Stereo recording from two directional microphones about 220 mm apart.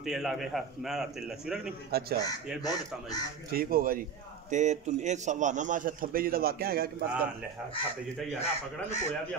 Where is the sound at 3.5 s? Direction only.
45° right (ahead or behind).